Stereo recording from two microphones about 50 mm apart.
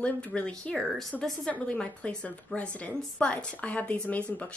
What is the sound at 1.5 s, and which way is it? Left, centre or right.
Speech, left.